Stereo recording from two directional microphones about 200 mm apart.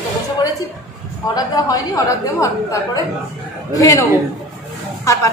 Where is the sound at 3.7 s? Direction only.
15° left (ahead or behind).